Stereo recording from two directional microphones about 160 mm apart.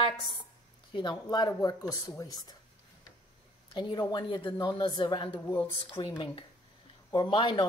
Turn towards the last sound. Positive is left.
turn(degrees=30)  # may be behind; listen again after turning